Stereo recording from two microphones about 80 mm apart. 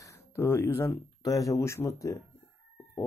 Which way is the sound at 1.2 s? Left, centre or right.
Left.